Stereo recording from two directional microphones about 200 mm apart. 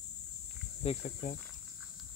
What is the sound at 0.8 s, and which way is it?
Speech, 35° left (ahead or behind).